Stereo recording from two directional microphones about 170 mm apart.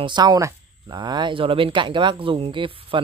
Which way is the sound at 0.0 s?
25° right (ahead or behind).